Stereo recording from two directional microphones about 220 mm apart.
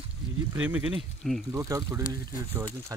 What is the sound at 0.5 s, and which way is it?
Speech, 5° right (ahead or behind).